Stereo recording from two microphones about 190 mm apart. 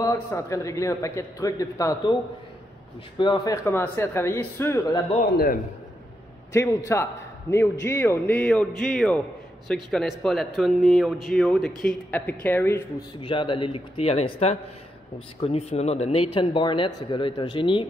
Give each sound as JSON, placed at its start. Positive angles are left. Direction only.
{"t": 0.0, "sound": "a man's voice", "side_deg": 15}
{"t": 3.2, "sound": "speech", "side_deg": 25}
{"t": 3.6, "sound": "a man's voice", "side_deg": 10}
{"t": 6.5, "sound": "a man's voice", "side_deg": 15}
{"t": 13.2, "sound": "speech", "side_deg": 25}